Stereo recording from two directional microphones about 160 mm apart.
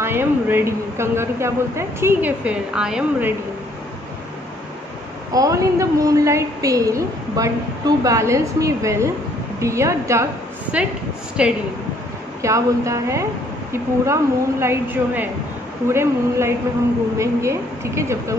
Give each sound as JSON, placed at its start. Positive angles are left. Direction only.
{"t": 0.0, "sound": "a woman's voice", "side_deg": -15}
{"t": 5.3, "sound": "a woman's voice", "side_deg": -20}
{"t": 10.7, "sound": "a woman's voice", "side_deg": -10}
{"t": 12.4, "sound": "a woman's voice", "side_deg": -20}